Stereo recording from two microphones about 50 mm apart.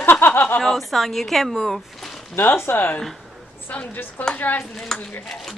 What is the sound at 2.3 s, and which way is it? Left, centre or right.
Speech, left.